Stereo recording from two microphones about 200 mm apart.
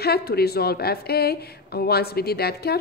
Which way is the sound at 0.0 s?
50° left (ahead or behind).